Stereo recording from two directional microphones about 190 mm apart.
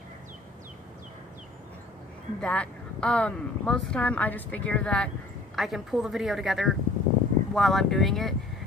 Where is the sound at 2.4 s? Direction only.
5° left (ahead or behind).